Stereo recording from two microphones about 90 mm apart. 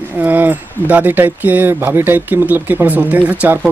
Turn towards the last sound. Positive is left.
turn(degrees=-20)  # may be behind; listen again after turning